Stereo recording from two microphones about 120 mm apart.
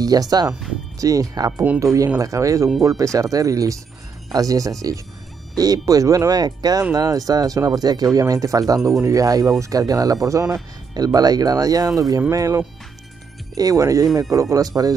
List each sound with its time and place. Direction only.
0.0 s speech: 30° right (ahead or behind)